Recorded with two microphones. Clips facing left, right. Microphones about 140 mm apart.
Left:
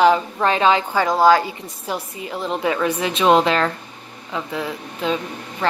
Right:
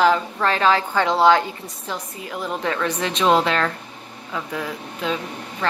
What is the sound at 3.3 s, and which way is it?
Speech, 25° left (ahead or behind).